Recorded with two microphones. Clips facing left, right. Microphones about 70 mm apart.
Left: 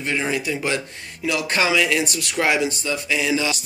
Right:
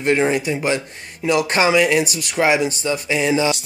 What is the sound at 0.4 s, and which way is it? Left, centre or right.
Speech, right.